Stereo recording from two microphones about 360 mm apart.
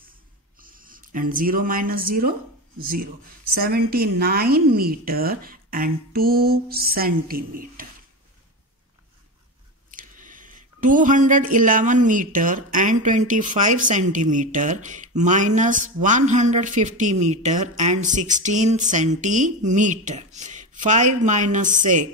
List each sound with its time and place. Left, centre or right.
0.6 s speech: right
9.9 s speech: right